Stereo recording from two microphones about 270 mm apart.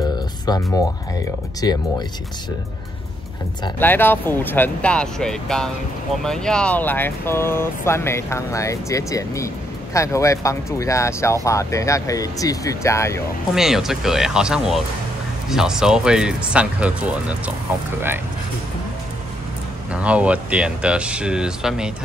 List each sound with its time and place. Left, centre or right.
0.5 s speech: centre
3.6 s speech: centre
13.6 s speech: centre
19.9 s speech: centre